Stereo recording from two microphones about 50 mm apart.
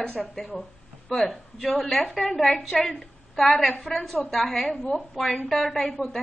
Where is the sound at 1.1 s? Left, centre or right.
Centre.